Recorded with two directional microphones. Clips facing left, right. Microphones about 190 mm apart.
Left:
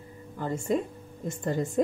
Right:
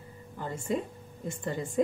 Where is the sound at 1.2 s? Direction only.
40° left (ahead or behind).